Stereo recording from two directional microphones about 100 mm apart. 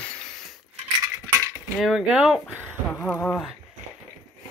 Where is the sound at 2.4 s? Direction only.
10° left (ahead or behind).